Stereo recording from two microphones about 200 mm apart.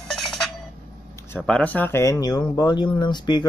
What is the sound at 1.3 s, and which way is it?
Speech, 5° left (ahead or behind).